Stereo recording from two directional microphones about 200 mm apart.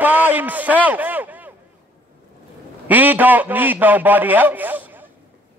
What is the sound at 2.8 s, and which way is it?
A man's voice, 10° right (ahead or behind).